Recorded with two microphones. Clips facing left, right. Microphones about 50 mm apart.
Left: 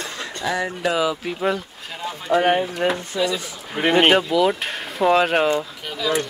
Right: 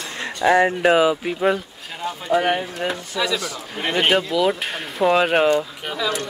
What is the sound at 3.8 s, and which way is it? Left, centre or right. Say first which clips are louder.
Speech: left 4 dB; left.